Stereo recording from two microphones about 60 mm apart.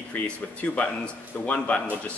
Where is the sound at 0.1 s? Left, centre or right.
Left.